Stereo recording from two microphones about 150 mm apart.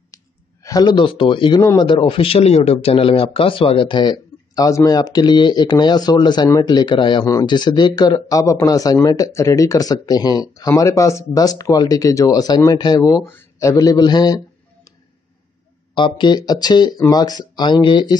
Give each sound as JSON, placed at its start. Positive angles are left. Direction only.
{"t": 0.1, "sound": "speech", "side_deg": 20}
{"t": 15.9, "sound": "speech", "side_deg": 30}